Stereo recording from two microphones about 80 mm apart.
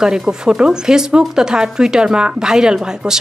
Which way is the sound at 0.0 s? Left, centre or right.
Centre.